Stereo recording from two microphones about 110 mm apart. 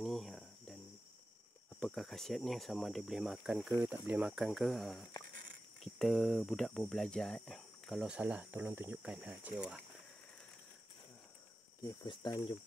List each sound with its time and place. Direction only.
0.0 s cricket: centre (ahead or behind)
1.8 s speech: 5° left (ahead or behind)
11.8 s speech: 40° left (ahead or behind)